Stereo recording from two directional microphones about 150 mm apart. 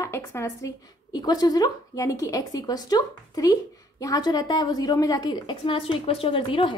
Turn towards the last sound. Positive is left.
turn(degrees=35)  # may be behind; listen again after turning